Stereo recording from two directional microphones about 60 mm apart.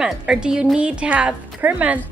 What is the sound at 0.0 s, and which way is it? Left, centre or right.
A woman's voice, centre.